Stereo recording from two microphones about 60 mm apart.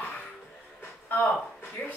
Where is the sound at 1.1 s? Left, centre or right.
Left.